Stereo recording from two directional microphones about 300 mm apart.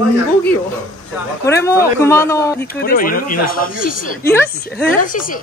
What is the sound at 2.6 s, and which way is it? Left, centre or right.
A woman's voice, left.